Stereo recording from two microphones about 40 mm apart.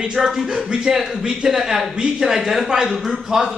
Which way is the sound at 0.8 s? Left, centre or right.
Centre.